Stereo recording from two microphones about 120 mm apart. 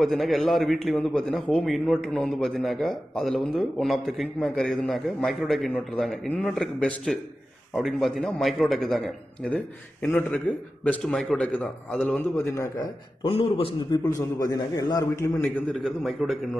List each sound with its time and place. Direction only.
0.0 s a man's voice: centre (ahead or behind)
10.1 s a man's voice: 15° left (ahead or behind)
12.4 s a man's voice: 25° left (ahead or behind)
13.2 s a man's voice: 50° left (ahead or behind)
14.1 s a man's voice: 25° left (ahead or behind)
15.8 s a man's voice: centre (ahead or behind)